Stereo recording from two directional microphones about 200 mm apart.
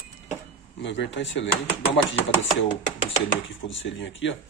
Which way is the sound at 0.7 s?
65° left (ahead or behind).